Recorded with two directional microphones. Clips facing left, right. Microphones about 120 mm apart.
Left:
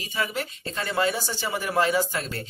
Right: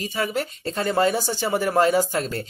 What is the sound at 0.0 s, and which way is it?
Speech, 45° right (ahead or behind).